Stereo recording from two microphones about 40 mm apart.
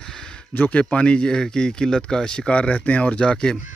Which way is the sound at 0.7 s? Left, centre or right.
Left.